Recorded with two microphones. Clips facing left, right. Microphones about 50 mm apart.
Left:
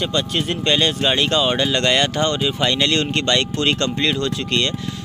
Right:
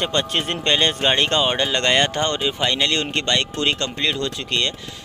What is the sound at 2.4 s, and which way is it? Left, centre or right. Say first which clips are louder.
Speech: left 2 dB; centre.